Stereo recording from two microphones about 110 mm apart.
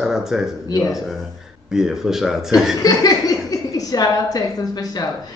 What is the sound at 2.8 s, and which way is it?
A woman's voice, 35° left (ahead or behind).